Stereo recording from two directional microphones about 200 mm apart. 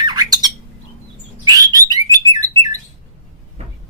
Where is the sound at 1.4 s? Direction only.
20° right (ahead or behind).